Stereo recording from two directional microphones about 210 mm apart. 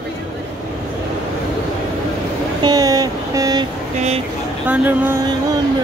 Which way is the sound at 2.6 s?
15° right (ahead or behind).